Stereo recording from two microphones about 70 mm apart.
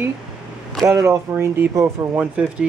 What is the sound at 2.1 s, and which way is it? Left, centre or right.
Speech, right.